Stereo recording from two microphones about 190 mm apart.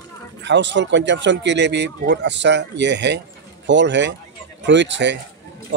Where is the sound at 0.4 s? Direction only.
70° right (ahead or behind).